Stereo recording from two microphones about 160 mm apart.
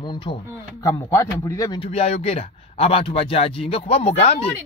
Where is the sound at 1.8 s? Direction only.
40° left (ahead or behind).